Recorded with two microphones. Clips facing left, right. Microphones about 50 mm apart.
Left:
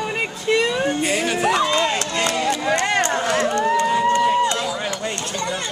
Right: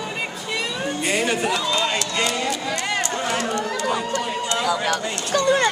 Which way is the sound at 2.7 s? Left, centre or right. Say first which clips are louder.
Left 5 dB; left.